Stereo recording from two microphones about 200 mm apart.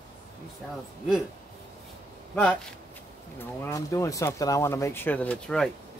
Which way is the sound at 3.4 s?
15° left (ahead or behind).